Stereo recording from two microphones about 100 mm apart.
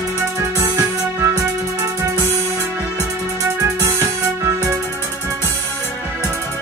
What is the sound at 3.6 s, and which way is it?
Music, 30° right (ahead or behind).